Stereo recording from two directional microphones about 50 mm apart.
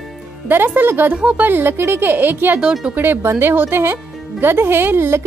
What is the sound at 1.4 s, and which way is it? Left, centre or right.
Speech, right.